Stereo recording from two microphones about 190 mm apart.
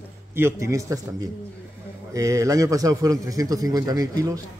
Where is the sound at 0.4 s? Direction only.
15° right (ahead or behind).